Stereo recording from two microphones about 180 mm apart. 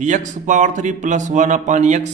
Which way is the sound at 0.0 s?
45° right (ahead or behind).